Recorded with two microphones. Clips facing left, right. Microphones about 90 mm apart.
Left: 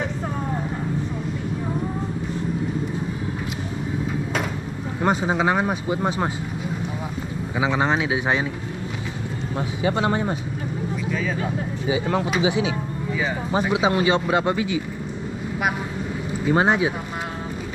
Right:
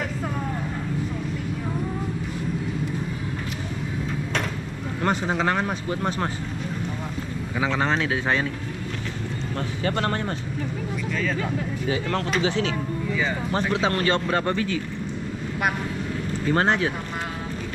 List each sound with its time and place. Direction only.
5.0 s speech: 15° left (ahead or behind)
7.5 s speech: 15° left (ahead or behind)
9.6 s speech: 10° left (ahead or behind)
16.4 s speech: 10° left (ahead or behind)